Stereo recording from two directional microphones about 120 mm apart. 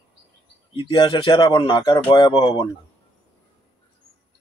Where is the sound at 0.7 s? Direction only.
40° left (ahead or behind).